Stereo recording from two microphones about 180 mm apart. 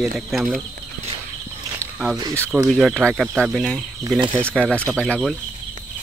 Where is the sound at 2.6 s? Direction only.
Centre (ahead or behind).